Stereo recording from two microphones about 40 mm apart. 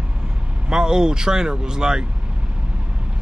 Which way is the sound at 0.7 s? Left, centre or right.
Centre.